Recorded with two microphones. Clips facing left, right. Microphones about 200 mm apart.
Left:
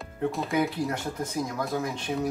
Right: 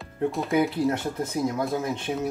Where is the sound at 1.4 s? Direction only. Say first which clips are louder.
Right 5 dB; 25° right (ahead or behind).